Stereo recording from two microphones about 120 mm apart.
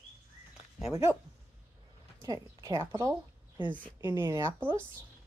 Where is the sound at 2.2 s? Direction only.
30° right (ahead or behind).